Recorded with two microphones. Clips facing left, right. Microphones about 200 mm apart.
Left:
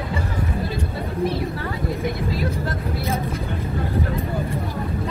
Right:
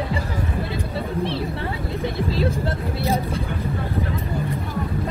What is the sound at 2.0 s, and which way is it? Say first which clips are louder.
Vehicle: right 5 dB; 30° right (ahead or behind).